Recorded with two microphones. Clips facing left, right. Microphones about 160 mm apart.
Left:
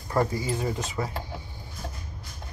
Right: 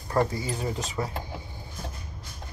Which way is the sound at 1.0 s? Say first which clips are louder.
Right 1 dB; 20° right (ahead or behind).